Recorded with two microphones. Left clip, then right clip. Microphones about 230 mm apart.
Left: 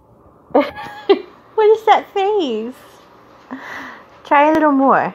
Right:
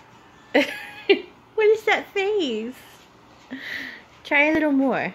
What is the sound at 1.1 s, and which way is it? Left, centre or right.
Speech, centre.